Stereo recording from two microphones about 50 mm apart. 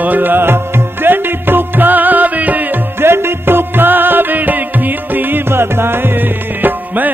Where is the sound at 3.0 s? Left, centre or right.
Right.